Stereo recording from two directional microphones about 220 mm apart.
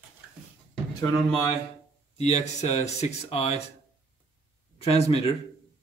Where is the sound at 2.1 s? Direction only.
30° left (ahead or behind).